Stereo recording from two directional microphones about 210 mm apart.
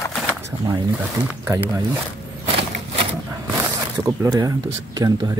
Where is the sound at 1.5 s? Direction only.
15° right (ahead or behind).